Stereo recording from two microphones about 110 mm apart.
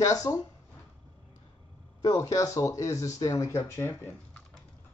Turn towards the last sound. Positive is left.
turn(degrees=25)  # may be behind; listen again after turning